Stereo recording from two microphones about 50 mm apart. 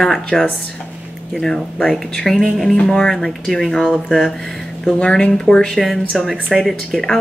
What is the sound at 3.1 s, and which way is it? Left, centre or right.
Speech, centre.